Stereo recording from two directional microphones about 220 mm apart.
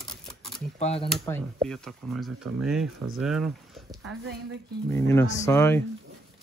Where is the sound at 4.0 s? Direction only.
70° right (ahead or behind).